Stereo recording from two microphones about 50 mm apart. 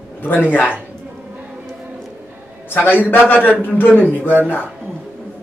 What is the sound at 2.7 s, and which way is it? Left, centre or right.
A man's voice, left.